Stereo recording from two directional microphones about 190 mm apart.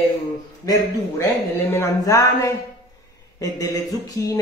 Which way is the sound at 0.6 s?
20° left (ahead or behind).